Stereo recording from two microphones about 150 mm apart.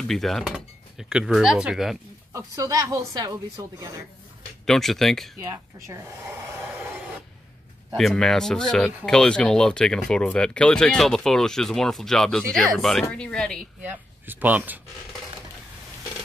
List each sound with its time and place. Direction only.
0.1 s speech: centre (ahead or behind)
2.3 s a woman's voice: 20° right (ahead or behind)
4.6 s speech: 5° left (ahead or behind)
5.5 s speech: 20° right (ahead or behind)
7.9 s speech: centre (ahead or behind)
13.8 s speech: 15° right (ahead or behind)